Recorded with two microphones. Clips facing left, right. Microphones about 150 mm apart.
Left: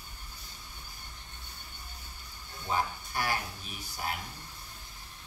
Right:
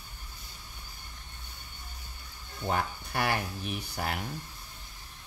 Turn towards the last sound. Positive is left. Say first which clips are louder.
# right 3 dB
turn(degrees=-70)  # may be behind; listen again after turning